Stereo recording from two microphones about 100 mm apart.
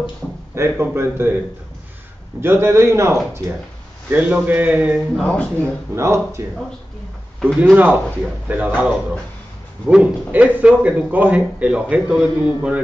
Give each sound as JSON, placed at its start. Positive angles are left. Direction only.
{"t": 0.6, "sound": "speech", "side_deg": -25}
{"t": 2.4, "sound": "speech", "side_deg": -25}
{"t": 4.1, "sound": "speech", "side_deg": -15}
{"t": 5.1, "sound": "speech", "side_deg": 10}
{"t": 5.9, "sound": "speech", "side_deg": -30}
{"t": 7.3, "sound": "speech", "side_deg": 5}
{"t": 7.7, "sound": "speech", "side_deg": -15}
{"t": 9.8, "sound": "speech", "side_deg": -10}